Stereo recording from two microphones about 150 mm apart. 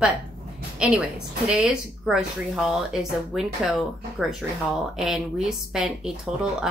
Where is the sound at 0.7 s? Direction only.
5° right (ahead or behind).